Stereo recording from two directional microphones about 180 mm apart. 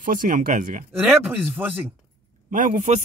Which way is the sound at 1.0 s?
10° right (ahead or behind).